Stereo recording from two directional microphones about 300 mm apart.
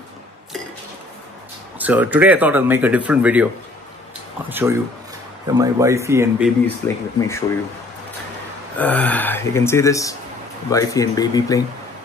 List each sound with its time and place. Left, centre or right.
1.8 s speech: centre
4.5 s speech: centre
6.8 s speech: centre
8.7 s speech: centre